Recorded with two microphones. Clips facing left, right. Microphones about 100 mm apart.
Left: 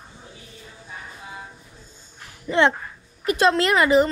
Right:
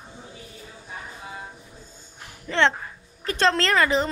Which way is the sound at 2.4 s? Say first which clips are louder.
Left 3 dB; 10° left (ahead or behind).